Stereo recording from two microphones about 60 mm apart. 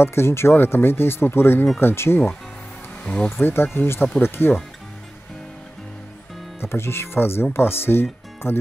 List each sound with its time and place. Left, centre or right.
0.0 s speech: left
3.0 s a sound: centre
3.3 s speech: left
6.6 s speech: left